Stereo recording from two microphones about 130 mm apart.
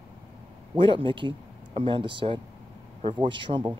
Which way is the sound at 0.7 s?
40° right (ahead or behind).